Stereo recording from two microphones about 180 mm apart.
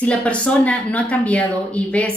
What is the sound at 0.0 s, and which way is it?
A woman's voice, 5° left (ahead or behind).